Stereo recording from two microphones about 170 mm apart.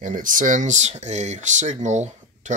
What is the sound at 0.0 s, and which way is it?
Speech, 50° right (ahead or behind).